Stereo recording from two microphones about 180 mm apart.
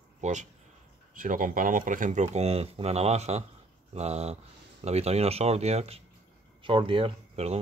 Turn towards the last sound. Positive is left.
turn(degrees=-35)  # may be behind; listen again after turning